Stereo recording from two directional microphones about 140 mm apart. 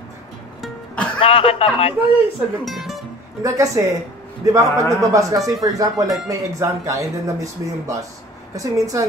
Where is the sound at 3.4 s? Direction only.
25° right (ahead or behind).